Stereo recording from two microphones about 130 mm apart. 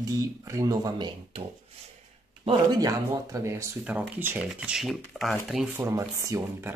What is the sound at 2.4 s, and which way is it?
Speech, 35° right (ahead or behind).